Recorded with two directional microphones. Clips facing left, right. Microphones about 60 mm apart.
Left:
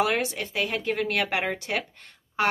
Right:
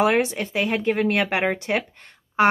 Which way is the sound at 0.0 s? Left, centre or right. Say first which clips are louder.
Right 5 dB; right.